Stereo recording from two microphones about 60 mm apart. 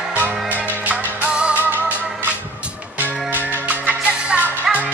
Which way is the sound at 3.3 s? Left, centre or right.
Right.